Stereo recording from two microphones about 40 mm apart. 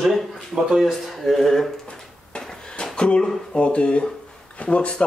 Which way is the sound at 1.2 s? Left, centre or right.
Centre.